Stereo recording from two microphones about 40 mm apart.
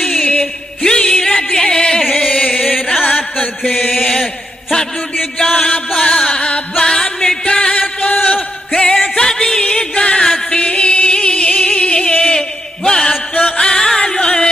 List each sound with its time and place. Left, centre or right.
0.8 s music: centre
3.1 s a sound: left
3.7 s chant: centre
5.4 s music: centre
6.3 s music: left
6.8 s music: centre
7.8 s a sound: left
8.7 s music: centre
9.6 s music: left
12.4 s a sound: centre
13.6 s music: centre